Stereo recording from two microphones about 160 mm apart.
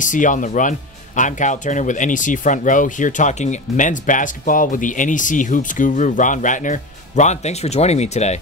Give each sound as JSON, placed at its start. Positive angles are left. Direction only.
{"t": 0.0, "sound": "speech", "side_deg": 55}